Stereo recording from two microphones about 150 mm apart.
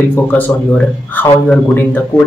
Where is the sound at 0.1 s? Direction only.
15° left (ahead or behind).